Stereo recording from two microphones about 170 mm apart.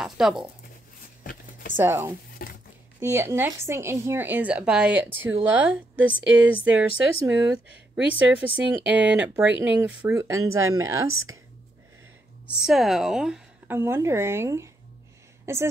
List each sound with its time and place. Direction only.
0.0 s a sound: 5° right (ahead or behind)
1.2 s a sound: 55° left (ahead or behind)
1.8 s speech: 15° right (ahead or behind)
2.4 s a sound: 60° left (ahead or behind)
3.0 s speech: 15° right (ahead or behind)
6.2 s speech: 90° right
6.5 s speech: 10° right (ahead or behind)
7.9 s speech: 10° right (ahead or behind)
12.4 s a woman's voice: centre (ahead or behind)
13.7 s speech: 15° right (ahead or behind)